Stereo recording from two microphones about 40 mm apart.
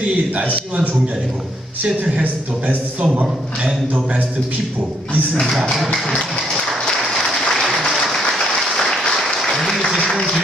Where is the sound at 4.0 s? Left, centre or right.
Right.